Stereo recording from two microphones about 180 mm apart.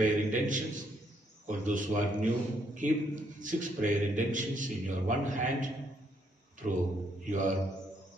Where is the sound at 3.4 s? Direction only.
45° right (ahead or behind).